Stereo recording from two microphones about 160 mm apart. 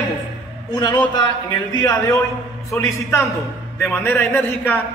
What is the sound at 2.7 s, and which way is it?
A man's voice, 15° left (ahead or behind).